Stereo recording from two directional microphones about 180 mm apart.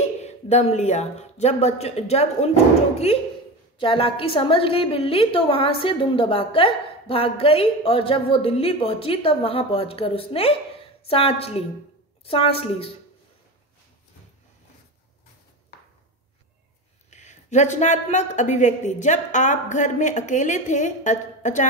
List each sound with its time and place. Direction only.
0.2 s a woman's voice: 35° left (ahead or behind)
17.1 s speech: 40° left (ahead or behind)